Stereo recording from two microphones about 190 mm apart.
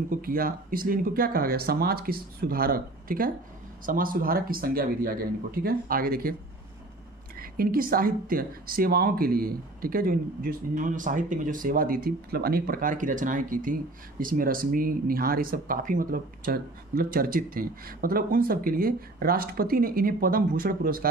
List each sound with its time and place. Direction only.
0.1 s speech: 50° right (ahead or behind)
7.3 s speech: 50° right (ahead or behind)